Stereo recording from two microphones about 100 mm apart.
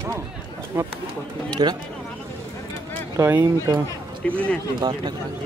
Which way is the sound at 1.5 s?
45° right (ahead or behind).